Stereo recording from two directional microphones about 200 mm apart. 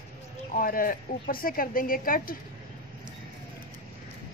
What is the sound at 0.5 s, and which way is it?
A woman's voice, 45° left (ahead or behind).